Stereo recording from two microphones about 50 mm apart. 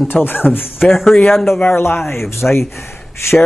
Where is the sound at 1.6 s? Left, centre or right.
Left.